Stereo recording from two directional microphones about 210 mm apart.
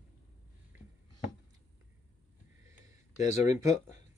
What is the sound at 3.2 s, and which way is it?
Speech, 35° left (ahead or behind).